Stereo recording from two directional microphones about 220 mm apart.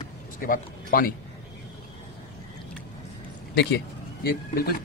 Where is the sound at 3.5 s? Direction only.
45° left (ahead or behind).